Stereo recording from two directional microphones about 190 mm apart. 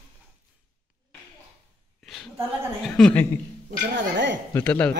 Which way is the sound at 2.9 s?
5° left (ahead or behind).